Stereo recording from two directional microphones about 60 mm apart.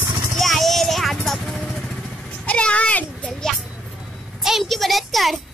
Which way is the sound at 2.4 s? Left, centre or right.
Left.